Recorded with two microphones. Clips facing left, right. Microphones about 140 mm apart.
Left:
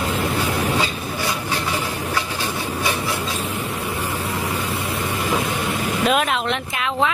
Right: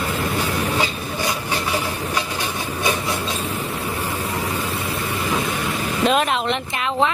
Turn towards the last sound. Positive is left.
turn(degrees=5)  # may be behind; listen again after turning